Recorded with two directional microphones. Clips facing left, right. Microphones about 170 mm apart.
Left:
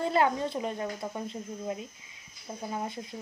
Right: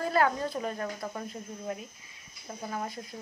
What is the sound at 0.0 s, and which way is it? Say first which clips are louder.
Speech: left 1 dB; 25° left (ahead or behind).